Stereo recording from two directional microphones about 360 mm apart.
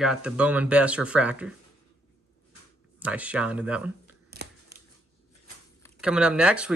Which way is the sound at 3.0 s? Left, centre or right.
Centre.